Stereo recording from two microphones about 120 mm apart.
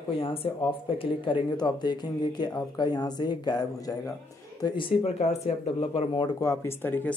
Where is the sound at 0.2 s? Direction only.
50° left (ahead or behind).